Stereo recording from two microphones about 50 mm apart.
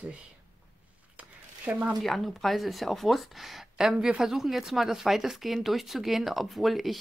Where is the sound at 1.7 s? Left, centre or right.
Right.